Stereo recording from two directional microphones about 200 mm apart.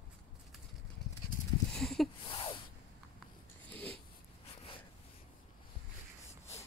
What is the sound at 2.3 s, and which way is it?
Snort, 25° left (ahead or behind).